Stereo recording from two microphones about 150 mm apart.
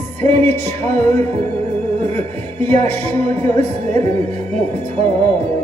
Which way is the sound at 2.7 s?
50° right (ahead or behind).